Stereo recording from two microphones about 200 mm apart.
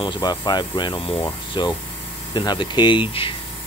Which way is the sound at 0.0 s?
20° left (ahead or behind).